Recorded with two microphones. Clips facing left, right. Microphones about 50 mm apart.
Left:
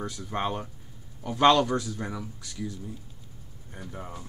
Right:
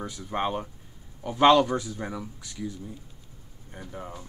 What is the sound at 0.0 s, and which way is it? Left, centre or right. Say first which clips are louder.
Speech: right 1 dB; centre.